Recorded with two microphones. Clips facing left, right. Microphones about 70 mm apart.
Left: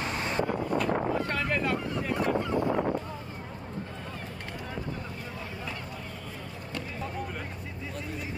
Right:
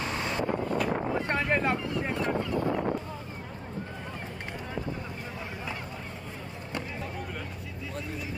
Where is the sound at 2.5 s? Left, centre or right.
Left.